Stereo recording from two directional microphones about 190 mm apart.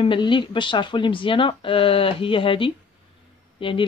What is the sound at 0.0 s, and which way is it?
Speech, 25° left (ahead or behind).